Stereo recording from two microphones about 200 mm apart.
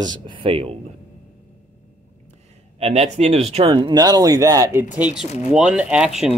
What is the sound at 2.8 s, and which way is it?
Speech, 30° right (ahead or behind).